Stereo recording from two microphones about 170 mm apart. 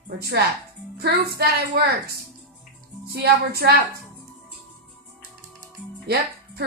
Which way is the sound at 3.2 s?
70° right (ahead or behind).